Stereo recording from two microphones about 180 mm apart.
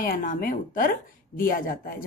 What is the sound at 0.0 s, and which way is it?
Speech, 50° left (ahead or behind).